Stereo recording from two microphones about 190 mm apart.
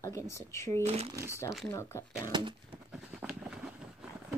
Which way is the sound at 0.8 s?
35° right (ahead or behind).